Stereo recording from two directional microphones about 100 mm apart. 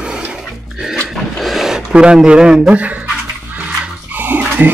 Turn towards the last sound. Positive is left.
turn(degrees=-20)  # may be behind; listen again after turning